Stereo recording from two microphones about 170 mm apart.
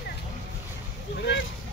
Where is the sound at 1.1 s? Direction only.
90° left.